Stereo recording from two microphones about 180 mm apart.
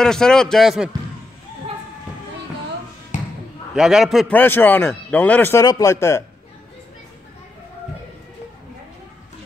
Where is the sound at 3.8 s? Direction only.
Centre (ahead or behind); by 6.2 s 15° left (ahead or behind).